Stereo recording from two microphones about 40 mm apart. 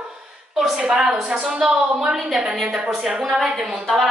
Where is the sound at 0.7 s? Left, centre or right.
Centre.